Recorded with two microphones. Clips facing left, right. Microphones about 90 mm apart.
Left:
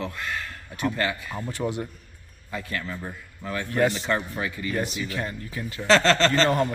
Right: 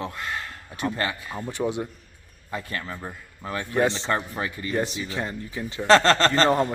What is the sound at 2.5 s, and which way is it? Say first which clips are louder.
A man's voice: even; 30° right (ahead or behind).